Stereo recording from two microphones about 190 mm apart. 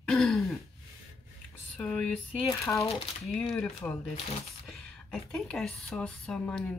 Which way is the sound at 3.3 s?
Centre (ahead or behind).